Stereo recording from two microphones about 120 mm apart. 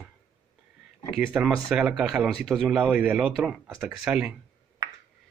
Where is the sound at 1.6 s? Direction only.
5° right (ahead or behind).